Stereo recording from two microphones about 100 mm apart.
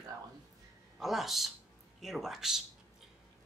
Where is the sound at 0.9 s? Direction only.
Centre (ahead or behind).